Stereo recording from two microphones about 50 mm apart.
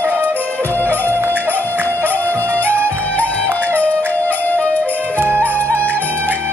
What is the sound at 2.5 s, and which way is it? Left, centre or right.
Music, left.